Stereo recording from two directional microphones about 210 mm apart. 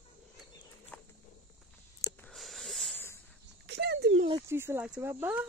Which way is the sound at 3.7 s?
50° right (ahead or behind).